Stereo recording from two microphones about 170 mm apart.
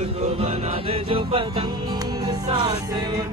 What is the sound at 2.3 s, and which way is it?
Music, 25° right (ahead or behind).